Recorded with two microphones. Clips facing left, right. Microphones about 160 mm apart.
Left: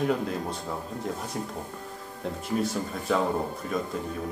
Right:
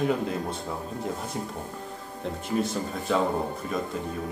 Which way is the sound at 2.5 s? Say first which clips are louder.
Right 1 dB; centre (ahead or behind).